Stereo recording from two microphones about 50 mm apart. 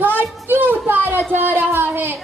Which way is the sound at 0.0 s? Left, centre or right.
Right.